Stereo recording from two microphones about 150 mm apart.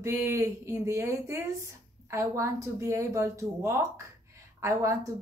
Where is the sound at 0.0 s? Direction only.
20° right (ahead or behind).